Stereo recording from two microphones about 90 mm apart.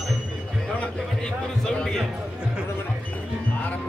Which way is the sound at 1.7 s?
10° left (ahead or behind).